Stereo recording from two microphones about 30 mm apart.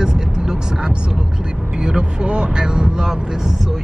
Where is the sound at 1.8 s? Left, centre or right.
Right.